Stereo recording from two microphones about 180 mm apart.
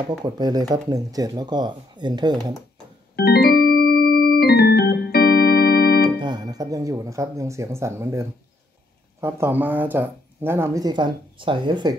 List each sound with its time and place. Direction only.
0.2 s speech: 25° right (ahead or behind)
3.2 s organ: 60° left (ahead or behind)
6.2 s speech: 20° right (ahead or behind)